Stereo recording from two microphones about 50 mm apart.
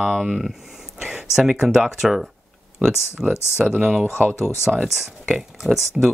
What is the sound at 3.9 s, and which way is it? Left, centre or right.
Speech, centre.